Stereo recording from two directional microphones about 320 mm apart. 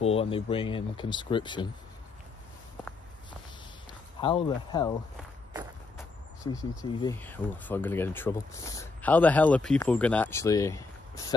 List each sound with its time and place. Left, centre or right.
0.0 s speech: centre
4.2 s speech: centre
5.9 s speech: centre